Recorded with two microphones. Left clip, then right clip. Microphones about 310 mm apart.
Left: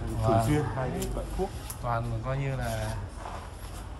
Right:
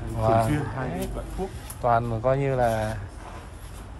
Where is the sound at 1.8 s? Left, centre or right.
Centre.